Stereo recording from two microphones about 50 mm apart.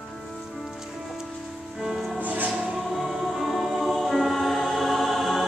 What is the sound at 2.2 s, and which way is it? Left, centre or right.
Music, right.